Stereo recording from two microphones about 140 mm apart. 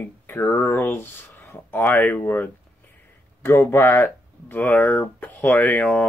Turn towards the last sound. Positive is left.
turn(degrees=10)  # may be behind; listen again after turning